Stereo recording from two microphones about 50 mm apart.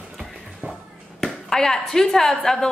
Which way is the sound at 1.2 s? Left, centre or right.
Centre.